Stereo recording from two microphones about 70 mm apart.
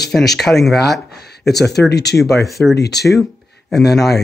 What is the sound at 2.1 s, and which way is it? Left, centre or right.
Speech, centre.